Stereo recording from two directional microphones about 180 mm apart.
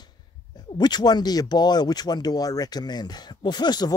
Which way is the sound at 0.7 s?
25° left (ahead or behind).